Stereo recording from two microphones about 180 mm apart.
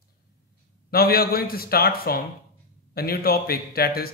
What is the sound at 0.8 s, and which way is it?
Speech, 55° left (ahead or behind).